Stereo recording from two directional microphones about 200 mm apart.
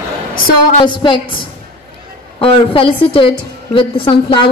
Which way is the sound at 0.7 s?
25° left (ahead or behind).